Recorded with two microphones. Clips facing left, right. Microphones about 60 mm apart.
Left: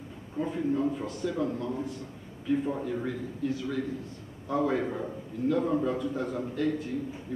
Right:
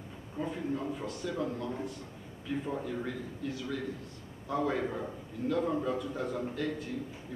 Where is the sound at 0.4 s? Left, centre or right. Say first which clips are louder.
Left 6 dB; centre.